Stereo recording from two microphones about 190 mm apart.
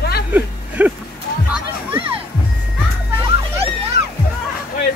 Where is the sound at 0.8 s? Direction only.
10° right (ahead or behind).